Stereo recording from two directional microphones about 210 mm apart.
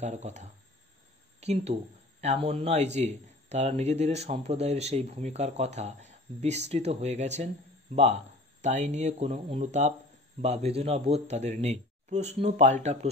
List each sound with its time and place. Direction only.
0.0 s a man's voice: 35° right (ahead or behind)